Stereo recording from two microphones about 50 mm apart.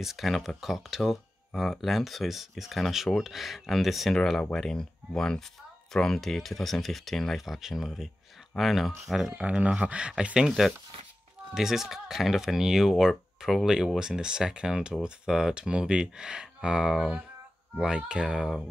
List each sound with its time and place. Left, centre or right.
0.0 s speech: centre
4.1 s speech: centre
9.4 s speech: centre
11.5 s speech: centre